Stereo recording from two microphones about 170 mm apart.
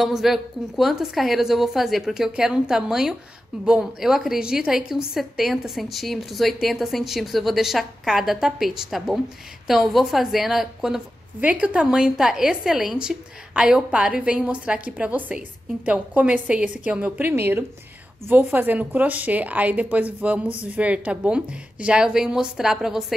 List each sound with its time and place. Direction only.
0.0 s a woman's voice: centre (ahead or behind)